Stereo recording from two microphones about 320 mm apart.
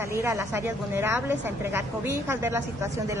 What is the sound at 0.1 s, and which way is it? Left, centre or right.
Speech, centre.